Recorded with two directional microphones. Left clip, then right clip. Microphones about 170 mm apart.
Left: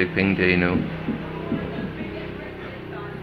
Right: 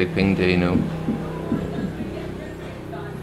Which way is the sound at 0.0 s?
15° right (ahead or behind).